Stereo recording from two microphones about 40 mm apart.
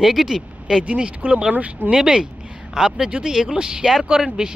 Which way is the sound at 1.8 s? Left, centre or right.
Right.